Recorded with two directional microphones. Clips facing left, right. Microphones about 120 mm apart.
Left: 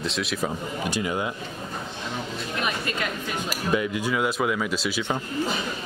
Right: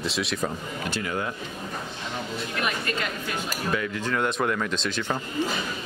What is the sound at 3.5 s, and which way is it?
Speech, 15° left (ahead or behind).